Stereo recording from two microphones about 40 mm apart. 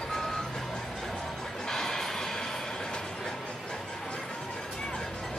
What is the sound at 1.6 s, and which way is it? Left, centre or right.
Train, centre.